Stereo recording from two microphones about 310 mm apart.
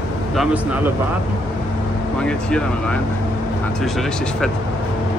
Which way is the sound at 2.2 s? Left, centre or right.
Centre.